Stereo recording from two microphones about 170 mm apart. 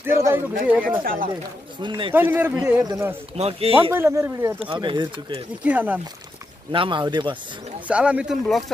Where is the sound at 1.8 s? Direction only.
25° right (ahead or behind).